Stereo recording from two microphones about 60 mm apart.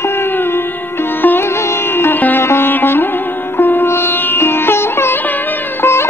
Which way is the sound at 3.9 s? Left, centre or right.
Left.